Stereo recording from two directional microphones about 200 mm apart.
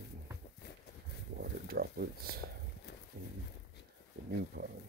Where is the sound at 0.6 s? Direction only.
55° left (ahead or behind).